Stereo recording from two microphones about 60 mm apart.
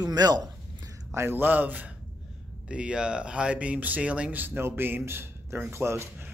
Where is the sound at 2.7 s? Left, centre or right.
Centre; by 6.0 s right.